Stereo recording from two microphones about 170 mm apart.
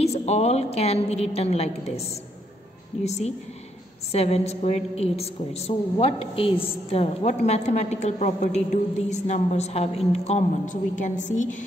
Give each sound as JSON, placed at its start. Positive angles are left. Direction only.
{"t": 0.0, "sound": "a woman's voice", "side_deg": 40}